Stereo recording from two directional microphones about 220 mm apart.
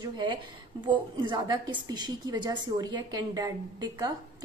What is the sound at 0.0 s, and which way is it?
A woman's voice, 20° right (ahead or behind).